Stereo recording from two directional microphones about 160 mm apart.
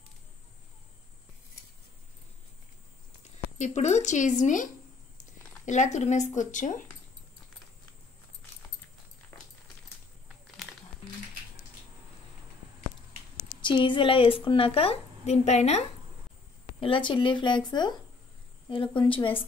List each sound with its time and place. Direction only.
3.5 s speech: 45° left (ahead or behind)
5.7 s speech: 50° left (ahead or behind)
10.2 s a sound: centre (ahead or behind)
13.6 s a woman's voice: 30° left (ahead or behind)
16.8 s a woman's voice: 30° left (ahead or behind)